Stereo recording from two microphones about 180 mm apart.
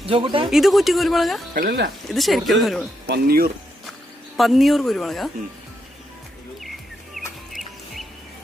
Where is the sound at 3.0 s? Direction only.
55° right (ahead or behind).